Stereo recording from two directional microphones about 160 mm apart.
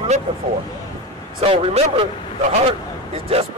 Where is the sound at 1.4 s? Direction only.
40° right (ahead or behind).